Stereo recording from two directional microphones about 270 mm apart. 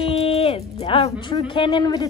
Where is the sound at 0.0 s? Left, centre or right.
Left.